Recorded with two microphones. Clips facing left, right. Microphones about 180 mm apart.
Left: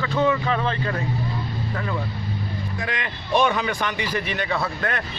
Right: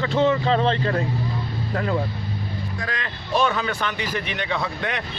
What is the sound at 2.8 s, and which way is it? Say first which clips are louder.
Speech: left 1 dB; 15° left (ahead or behind).